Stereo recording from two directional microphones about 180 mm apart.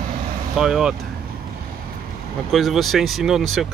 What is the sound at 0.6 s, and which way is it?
Speech, 5° right (ahead or behind).